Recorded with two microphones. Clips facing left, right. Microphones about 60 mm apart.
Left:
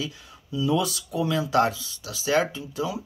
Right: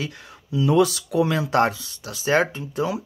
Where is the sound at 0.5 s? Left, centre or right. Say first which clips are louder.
Right 6 dB; right.